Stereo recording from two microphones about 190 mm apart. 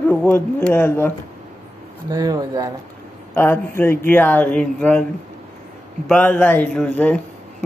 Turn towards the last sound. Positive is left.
turn(degrees=5)  # may be behind; listen again after turning